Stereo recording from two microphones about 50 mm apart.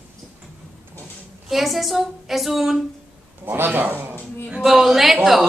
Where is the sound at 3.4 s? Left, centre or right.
Right.